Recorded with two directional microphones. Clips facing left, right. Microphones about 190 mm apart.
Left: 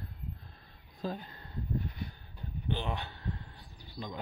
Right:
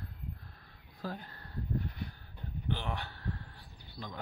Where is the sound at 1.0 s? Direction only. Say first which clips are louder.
Left 3 dB; 20° left (ahead or behind).